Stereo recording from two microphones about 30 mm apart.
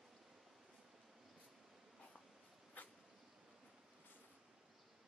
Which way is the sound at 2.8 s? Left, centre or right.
Left.